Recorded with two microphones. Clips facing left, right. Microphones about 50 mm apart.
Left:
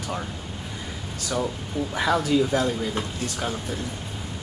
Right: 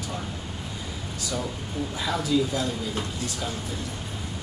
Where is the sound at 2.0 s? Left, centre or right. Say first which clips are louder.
Left 4 dB; left.